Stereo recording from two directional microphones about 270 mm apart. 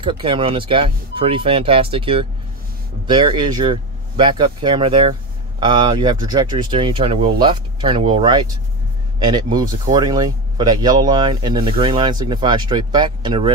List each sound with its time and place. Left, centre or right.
0.0 s speech: centre